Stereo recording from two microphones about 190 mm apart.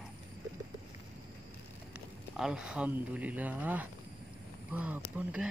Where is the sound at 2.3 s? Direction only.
5° right (ahead or behind).